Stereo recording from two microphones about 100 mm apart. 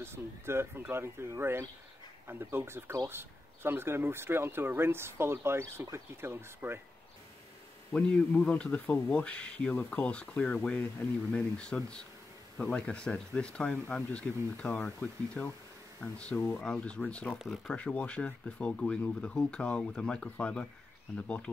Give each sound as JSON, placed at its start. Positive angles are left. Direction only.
{"t": 0.0, "sound": "speech", "side_deg": -25}
{"t": 7.9, "sound": "speech", "side_deg": 10}